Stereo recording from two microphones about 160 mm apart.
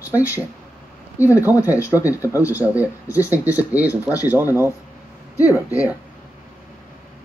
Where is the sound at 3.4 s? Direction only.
10° right (ahead or behind).